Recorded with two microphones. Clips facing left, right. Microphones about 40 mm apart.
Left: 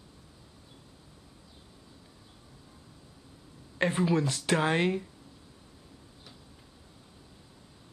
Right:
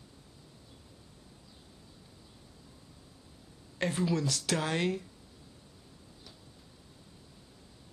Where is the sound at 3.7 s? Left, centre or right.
Left.